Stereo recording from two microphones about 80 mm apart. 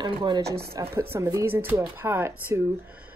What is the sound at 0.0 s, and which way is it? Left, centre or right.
Speech, right.